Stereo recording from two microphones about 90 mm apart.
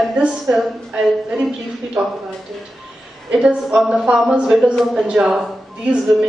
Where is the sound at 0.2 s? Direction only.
5° right (ahead or behind).